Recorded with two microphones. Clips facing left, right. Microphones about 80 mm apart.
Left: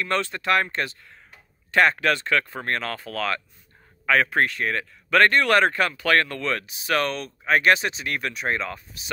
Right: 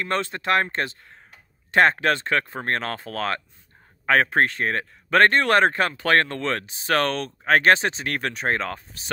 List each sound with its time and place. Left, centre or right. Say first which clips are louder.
0.0 s speech: even; right